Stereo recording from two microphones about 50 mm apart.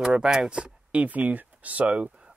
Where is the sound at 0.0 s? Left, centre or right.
Centre.